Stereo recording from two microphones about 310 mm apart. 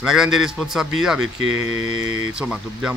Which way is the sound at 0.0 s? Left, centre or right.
Centre.